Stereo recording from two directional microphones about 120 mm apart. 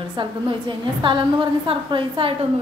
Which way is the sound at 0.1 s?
40° right (ahead or behind).